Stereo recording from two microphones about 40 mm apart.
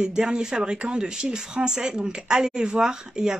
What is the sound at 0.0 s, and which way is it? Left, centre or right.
Speech, centre.